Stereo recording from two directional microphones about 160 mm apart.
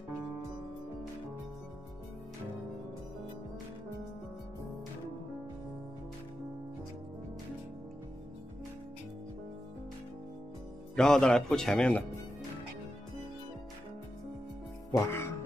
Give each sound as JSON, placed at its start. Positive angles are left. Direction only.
{"t": 11.0, "sound": "a man's voice", "side_deg": 5}
{"t": 14.9, "sound": "music", "side_deg": 15}